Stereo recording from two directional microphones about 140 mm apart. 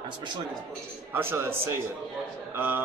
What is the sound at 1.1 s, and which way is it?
A man's voice, 15° right (ahead or behind).